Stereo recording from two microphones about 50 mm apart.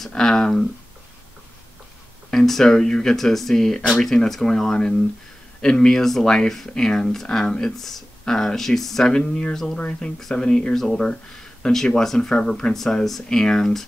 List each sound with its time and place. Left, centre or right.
0.1 s speech: centre
2.3 s speech: centre
7.4 s speech: centre
7.7 s speech: centre